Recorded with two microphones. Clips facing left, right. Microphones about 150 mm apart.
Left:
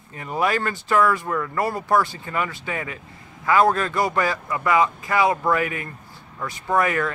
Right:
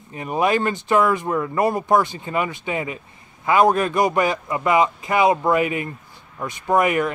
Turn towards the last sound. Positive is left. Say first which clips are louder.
# right 3 dB
turn(degrees=-20)  # may be behind; listen again after turning